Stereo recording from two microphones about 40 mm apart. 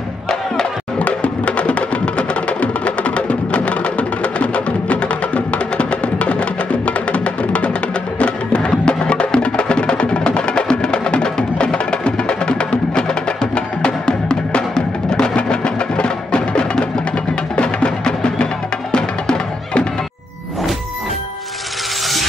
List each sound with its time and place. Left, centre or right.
0.9 s music: left